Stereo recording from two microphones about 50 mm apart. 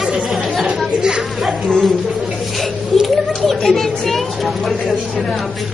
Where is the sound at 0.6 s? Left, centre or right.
Centre.